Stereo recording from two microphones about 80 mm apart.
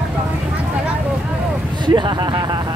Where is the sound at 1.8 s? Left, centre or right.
Right.